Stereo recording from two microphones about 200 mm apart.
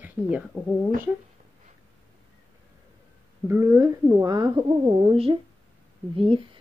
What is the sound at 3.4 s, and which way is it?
Speech, 15° right (ahead or behind).